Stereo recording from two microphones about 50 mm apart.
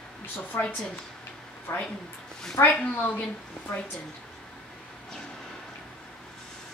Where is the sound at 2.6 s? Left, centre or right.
Left.